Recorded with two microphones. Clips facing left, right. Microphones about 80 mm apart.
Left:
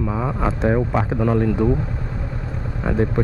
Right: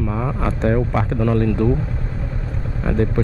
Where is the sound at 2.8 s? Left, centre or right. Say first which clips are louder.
Even; centre.